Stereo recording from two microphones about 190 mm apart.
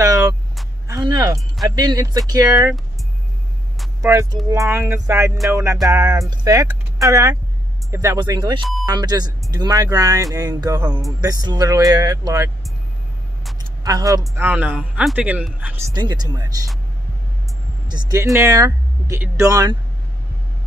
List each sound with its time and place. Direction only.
0.8 s a sound: 20° right (ahead or behind)
1.8 s speech: 20° right (ahead or behind)
4.0 s speech: 15° right (ahead or behind)
13.8 s speech: 20° right (ahead or behind)
15.9 s speech: 20° right (ahead or behind)
17.8 s speech: 20° right (ahead or behind)